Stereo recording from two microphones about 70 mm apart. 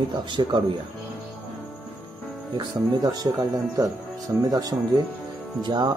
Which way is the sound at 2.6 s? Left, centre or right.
Right.